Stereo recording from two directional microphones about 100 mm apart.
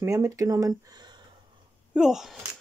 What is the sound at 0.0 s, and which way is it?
Speech, 30° right (ahead or behind).